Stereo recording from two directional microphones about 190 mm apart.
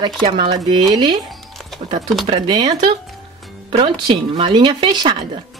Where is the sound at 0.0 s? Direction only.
25° right (ahead or behind).